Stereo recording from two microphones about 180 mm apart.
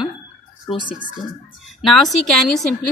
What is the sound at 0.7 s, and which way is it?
Speech, 35° left (ahead or behind).